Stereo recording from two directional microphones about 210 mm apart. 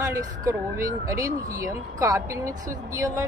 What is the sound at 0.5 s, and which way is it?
Speech, 15° right (ahead or behind).